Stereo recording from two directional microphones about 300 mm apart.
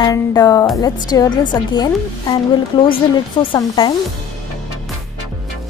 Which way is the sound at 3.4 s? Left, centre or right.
Centre.